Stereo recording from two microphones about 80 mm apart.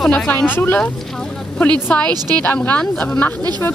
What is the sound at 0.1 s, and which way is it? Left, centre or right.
Speech, left.